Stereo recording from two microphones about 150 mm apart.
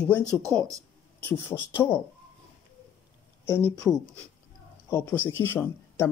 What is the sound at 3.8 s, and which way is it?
Speech, 5° left (ahead or behind).